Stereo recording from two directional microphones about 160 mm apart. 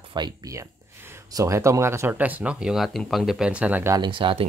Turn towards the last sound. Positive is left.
turn(degrees=-30)  # may be behind; listen again after turning